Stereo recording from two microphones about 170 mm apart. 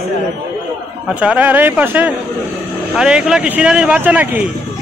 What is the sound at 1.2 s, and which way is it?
Speech, 10° right (ahead or behind).